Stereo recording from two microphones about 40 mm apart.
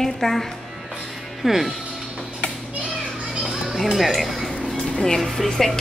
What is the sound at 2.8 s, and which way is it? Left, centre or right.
Children playing, centre.